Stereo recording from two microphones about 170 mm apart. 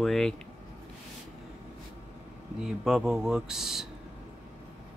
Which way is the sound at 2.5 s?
5° right (ahead or behind).